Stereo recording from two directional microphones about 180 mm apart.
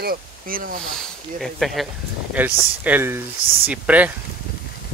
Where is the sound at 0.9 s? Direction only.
Centre (ahead or behind).